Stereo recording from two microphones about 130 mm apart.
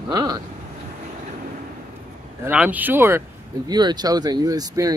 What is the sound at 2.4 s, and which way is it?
Speech, 10° right (ahead or behind).